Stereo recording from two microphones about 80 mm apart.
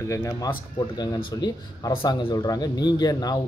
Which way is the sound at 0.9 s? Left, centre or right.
Left.